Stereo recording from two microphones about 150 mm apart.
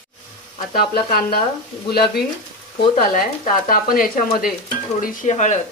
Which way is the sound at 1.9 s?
90° left.